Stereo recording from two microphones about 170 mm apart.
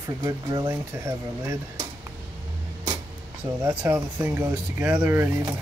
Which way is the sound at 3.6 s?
10° right (ahead or behind).